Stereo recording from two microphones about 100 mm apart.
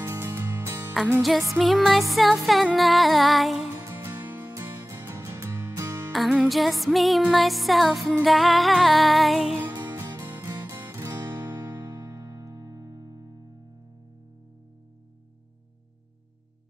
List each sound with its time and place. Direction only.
0.0 s music: 25° right (ahead or behind)
1.5 s music: centre (ahead or behind)
3.9 s music: 20° right (ahead or behind)
6.1 s music: centre (ahead or behind)
10.2 s music: 20° right (ahead or behind)
12.1 s music: 40° right (ahead or behind)